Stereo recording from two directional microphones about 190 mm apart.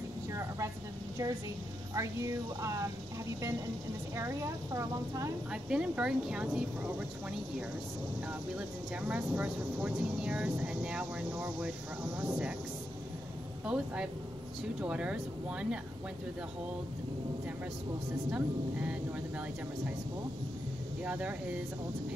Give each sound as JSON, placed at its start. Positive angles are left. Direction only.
{"t": 2.0, "sound": "a woman's voice", "side_deg": -15}
{"t": 4.2, "sound": "a woman's voice", "side_deg": -15}
{"t": 5.5, "sound": "speech", "side_deg": -5}
{"t": 8.5, "sound": "a woman's voice", "side_deg": -5}
{"t": 13.7, "sound": "speech", "side_deg": -5}
{"t": 18.3, "sound": "a woman's voice", "side_deg": -5}
{"t": 21.0, "sound": "a woman's voice", "side_deg": -10}